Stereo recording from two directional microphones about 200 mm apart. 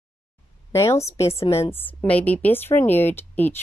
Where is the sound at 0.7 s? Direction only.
15° left (ahead or behind).